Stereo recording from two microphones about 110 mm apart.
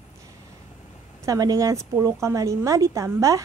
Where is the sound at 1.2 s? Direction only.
35° right (ahead or behind).